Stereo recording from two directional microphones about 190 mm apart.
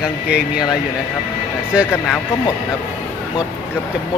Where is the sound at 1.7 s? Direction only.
5° right (ahead or behind).